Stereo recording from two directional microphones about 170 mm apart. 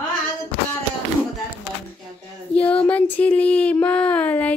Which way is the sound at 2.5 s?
10° left (ahead or behind).